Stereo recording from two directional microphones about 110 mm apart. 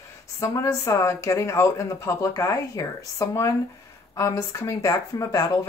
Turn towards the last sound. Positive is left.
turn(degrees=35)  # may be behind; listen again after turning